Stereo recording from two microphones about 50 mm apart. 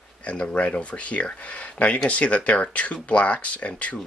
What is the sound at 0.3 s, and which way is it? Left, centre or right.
Speech, left.